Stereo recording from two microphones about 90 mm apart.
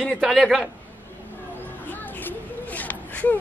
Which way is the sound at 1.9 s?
20° left (ahead or behind).